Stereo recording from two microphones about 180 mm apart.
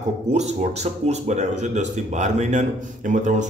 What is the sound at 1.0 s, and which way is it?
A man's voice, 40° right (ahead or behind).